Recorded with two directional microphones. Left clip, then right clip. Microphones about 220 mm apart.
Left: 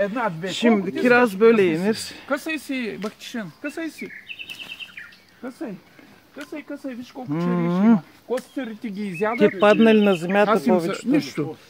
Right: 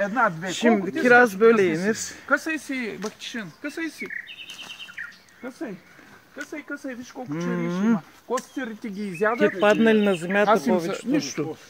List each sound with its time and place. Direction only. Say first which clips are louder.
0.0 s speech: right 1 dB; 60° left (ahead or behind)
0.5 s speech: left 1 dB; 20° left (ahead or behind)
2.3 s speech: right 2 dB; 70° left (ahead or behind)
5.4 s speech: left 2 dB; 55° left (ahead or behind)
7.3 s speech: left 4 dB; 25° left (ahead or behind)
8.5 s speech: left 1 dB; 70° left (ahead or behind)
9.6 s speech: left 4 dB; 20° left (ahead or behind)
10.4 s speech: even; 50° left (ahead or behind)